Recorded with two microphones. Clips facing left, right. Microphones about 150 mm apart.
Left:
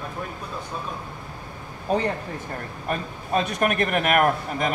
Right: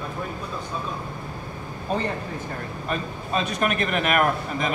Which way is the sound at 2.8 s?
60° left (ahead or behind).